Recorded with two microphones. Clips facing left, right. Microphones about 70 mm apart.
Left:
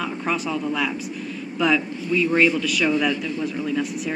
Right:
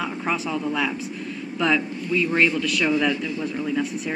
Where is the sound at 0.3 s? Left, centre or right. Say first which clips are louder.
Left 1 dB; centre.